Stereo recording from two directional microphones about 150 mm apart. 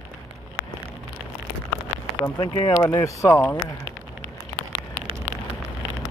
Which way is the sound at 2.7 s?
20° left (ahead or behind).